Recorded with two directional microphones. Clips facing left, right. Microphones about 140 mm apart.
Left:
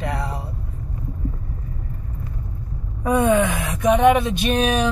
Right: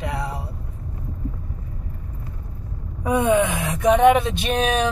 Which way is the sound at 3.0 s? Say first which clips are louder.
Left 1 dB; 15° right (ahead or behind).